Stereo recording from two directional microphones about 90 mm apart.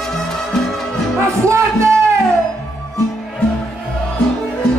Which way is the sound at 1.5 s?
30° right (ahead or behind).